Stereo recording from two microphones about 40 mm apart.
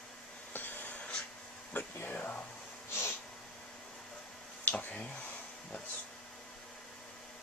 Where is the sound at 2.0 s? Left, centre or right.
Left.